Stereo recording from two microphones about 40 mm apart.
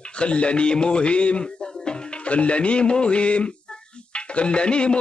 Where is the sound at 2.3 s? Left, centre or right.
Left.